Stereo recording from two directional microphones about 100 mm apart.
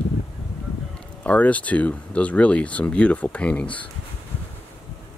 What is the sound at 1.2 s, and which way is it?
Speech, 15° left (ahead or behind).